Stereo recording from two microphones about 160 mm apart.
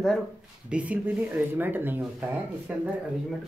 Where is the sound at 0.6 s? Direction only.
10° right (ahead or behind).